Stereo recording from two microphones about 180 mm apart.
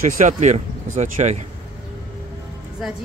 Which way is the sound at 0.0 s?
45° right (ahead or behind).